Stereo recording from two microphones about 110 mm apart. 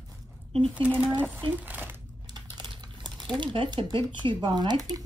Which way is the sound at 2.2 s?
45° right (ahead or behind).